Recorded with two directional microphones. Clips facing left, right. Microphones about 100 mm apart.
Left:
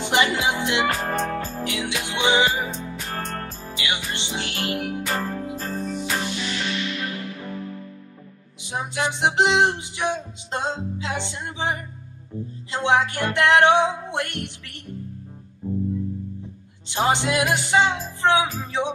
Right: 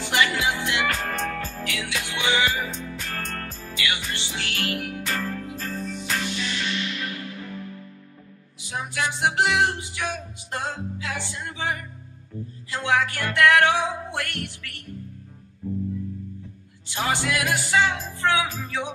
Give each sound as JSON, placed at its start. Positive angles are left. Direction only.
{"t": 0.0, "sound": "music", "side_deg": 20}
{"t": 8.6, "sound": "music", "side_deg": 20}
{"t": 16.9, "sound": "music", "side_deg": 20}